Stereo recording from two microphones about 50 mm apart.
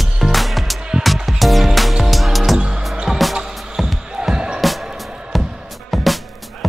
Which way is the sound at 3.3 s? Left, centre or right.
Centre.